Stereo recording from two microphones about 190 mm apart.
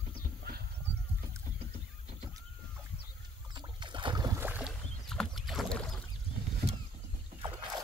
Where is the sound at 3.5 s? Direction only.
25° right (ahead or behind).